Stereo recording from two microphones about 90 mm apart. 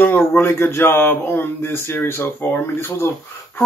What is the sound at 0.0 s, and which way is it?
Speech, 25° left (ahead or behind).